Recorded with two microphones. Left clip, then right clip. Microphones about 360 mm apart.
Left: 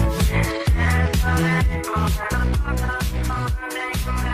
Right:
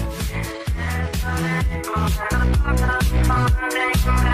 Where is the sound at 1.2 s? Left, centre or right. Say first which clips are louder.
Left 2 dB; left.